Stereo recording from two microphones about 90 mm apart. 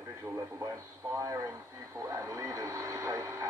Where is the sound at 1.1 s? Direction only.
40° right (ahead or behind).